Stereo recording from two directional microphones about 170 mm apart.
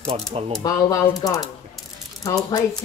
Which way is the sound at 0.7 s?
20° left (ahead or behind).